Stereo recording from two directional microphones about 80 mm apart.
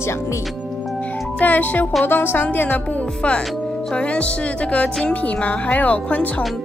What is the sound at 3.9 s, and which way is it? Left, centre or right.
Speech, centre.